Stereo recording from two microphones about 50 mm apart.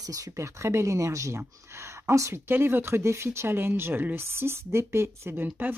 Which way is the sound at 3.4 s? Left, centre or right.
Right.